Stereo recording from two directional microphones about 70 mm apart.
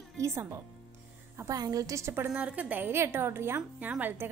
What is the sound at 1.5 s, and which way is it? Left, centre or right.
Speech, right.